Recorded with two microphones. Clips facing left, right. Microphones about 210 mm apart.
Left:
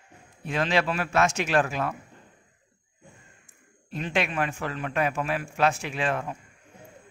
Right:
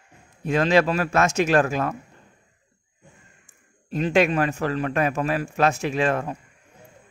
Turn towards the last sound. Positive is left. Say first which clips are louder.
# right 6 dB
turn(degrees=-40)  # may be behind; listen again after turning